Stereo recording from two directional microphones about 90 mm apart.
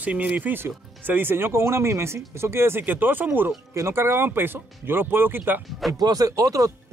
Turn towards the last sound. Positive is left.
turn(degrees=-40)  # may be behind; listen again after turning